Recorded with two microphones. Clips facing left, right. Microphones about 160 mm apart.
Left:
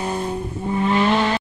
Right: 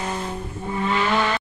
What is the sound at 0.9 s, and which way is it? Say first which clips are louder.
Vehicle: left 3 dB; 30° left (ahead or behind).